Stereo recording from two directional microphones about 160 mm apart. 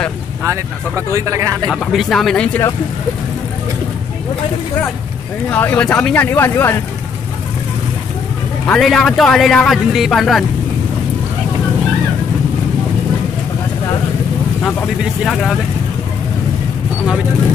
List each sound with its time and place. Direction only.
0.4 s speech: 15° right (ahead or behind)
1.7 s a man's voice: centre (ahead or behind)
5.5 s speech: 10° left (ahead or behind)
8.6 s a man's voice: centre (ahead or behind)
14.6 s a man's voice: centre (ahead or behind)